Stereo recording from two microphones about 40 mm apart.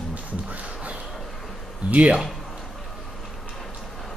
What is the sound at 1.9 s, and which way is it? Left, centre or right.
Speech, right.